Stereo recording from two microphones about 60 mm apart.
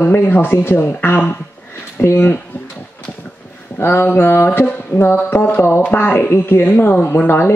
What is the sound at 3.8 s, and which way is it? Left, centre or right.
Speech, left.